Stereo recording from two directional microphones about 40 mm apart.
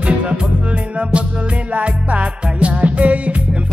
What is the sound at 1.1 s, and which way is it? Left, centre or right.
Music, right.